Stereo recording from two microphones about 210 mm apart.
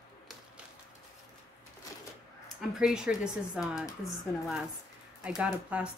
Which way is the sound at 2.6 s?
5° right (ahead or behind).